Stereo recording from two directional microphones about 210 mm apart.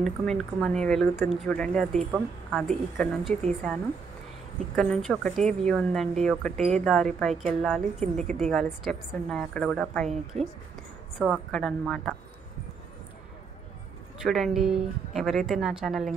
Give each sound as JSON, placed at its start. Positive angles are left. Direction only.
{"t": 0.0, "sound": "speech", "side_deg": 0}
{"t": 8.0, "sound": "a woman's voice", "side_deg": -35}
{"t": 8.4, "sound": "speech", "side_deg": 5}
{"t": 14.2, "sound": "speech", "side_deg": 0}